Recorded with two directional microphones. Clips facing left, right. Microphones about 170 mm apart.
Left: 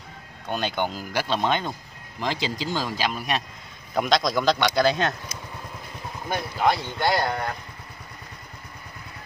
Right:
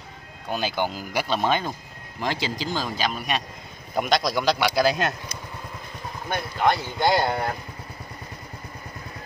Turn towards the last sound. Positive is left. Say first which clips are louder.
# right 2 dB
turn(degrees=-30)  # may be behind; listen again after turning